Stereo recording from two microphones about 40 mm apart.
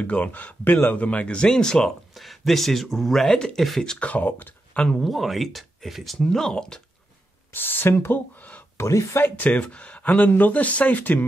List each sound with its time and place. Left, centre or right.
0.0 s speech: left; by 1.9 s centre
2.1 s speech: centre
4.0 s speech: left
5.0 s speech: centre
6.2 s speech: centre
7.5 s speech: left
8.1 s a sound: left
8.7 s speech: left
9.5 s speech: left
10.0 s speech: left